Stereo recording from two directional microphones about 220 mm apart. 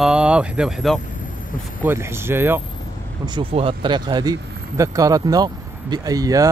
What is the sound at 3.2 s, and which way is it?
Speech, 20° right (ahead or behind).